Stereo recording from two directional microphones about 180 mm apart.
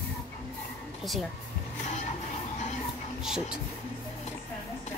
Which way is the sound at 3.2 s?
5° right (ahead or behind).